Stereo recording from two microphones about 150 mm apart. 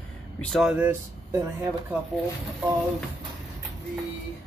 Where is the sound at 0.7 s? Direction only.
10° right (ahead or behind).